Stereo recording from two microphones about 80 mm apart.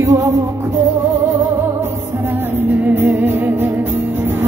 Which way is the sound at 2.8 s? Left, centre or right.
Right.